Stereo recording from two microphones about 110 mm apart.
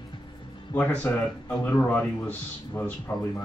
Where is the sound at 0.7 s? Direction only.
15° left (ahead or behind).